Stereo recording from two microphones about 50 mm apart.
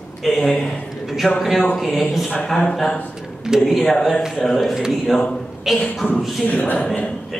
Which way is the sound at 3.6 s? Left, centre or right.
Centre.